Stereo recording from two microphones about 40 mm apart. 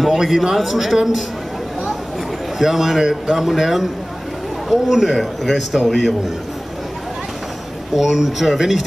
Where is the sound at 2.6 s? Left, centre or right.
Centre.